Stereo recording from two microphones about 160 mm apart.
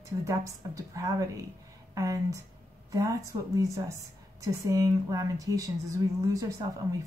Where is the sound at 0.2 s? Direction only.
20° right (ahead or behind).